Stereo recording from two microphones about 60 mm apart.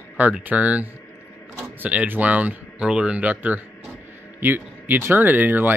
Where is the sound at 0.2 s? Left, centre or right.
Right.